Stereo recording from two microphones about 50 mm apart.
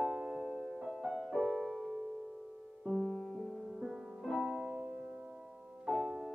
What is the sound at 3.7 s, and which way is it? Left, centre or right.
Music, centre.